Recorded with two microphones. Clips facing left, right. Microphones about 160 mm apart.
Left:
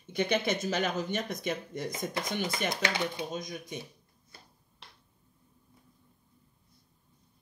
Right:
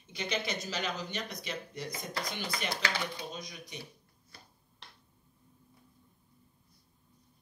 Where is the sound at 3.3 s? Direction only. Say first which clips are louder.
Left 7 dB; 50° left (ahead or behind).